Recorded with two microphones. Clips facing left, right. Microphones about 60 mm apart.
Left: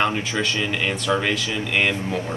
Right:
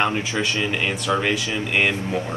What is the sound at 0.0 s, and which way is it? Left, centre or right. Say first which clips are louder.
Speech: even; centre.